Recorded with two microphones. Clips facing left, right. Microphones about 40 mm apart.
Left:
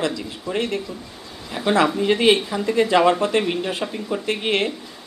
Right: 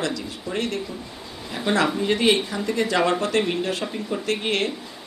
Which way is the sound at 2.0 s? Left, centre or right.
Left.